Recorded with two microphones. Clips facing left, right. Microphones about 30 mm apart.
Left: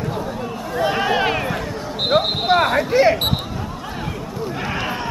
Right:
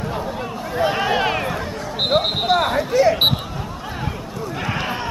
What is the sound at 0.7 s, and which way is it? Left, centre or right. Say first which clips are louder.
Basketball bounce: even; centre.